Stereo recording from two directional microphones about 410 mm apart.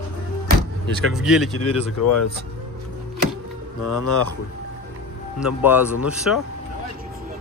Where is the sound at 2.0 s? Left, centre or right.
Left.